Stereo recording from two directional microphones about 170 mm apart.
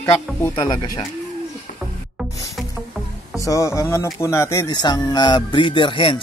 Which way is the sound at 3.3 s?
20° left (ahead or behind).